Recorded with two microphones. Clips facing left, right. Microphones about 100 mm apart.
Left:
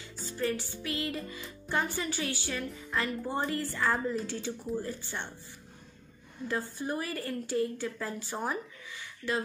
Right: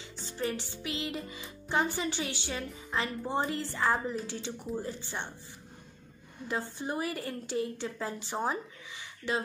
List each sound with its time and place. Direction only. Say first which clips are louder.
0.2 s music: left 2 dB; 20° right (ahead or behind)
4.3 s speech: left 2 dB; 15° right (ahead or behind)
6.4 s music: left 1 dB; 20° right (ahead or behind)